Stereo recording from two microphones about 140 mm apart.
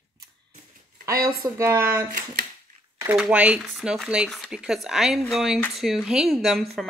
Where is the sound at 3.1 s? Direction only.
5° right (ahead or behind).